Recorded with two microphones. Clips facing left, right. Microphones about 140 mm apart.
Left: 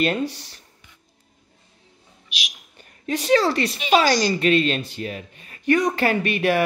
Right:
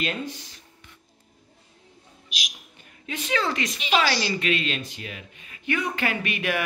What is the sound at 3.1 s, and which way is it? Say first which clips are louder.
Speech: left 8 dB; 35° left (ahead or behind).